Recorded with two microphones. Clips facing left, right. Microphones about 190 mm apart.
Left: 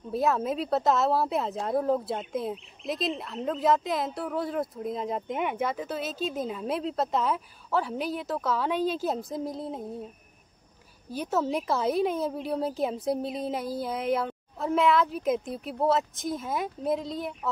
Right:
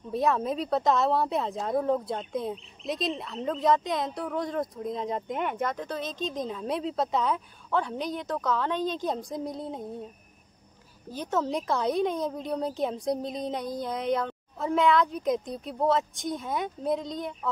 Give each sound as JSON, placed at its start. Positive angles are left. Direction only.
{"t": 0.1, "sound": "speech", "side_deg": 0}
{"t": 11.1, "sound": "speech", "side_deg": 10}